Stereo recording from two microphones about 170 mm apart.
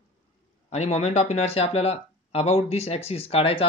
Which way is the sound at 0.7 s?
40° left (ahead or behind).